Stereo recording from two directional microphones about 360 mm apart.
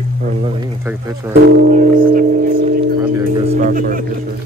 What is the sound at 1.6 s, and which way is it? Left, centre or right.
Music, right.